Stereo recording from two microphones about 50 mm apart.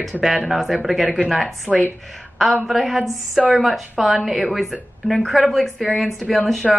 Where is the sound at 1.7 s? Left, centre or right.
Left.